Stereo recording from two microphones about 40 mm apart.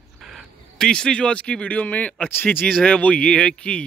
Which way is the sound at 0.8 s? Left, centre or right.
Left.